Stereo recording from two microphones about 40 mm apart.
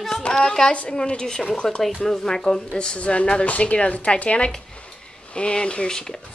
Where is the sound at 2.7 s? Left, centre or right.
Left.